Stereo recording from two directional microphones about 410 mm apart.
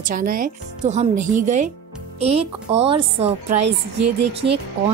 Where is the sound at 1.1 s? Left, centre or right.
Right.